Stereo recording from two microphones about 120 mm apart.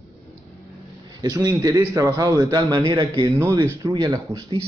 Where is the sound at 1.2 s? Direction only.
30° right (ahead or behind).